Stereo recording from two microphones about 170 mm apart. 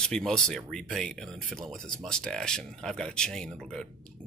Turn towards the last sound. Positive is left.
turn(degrees=5)  # may be behind; listen again after turning